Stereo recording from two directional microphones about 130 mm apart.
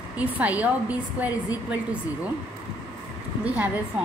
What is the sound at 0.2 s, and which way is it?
A woman's voice, 10° right (ahead or behind).